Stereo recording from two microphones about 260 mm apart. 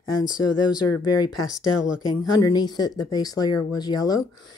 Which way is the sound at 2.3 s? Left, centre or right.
Centre.